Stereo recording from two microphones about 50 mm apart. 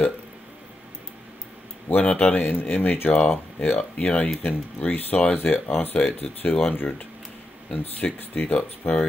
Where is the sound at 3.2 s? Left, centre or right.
Left.